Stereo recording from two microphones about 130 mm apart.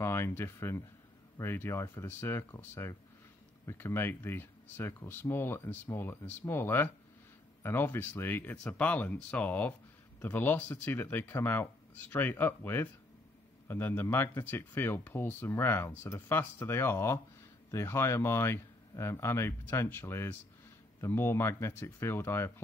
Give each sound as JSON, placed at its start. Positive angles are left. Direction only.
{"t": 0.0, "sound": "speech", "side_deg": 20}